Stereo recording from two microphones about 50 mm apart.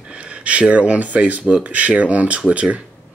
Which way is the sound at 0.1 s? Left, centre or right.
Right.